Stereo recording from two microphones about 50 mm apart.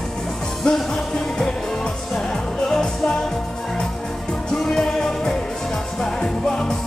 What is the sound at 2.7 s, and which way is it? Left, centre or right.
Music, centre.